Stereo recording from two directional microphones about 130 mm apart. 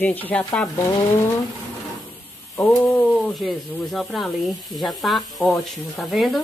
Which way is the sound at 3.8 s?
Centre (ahead or behind).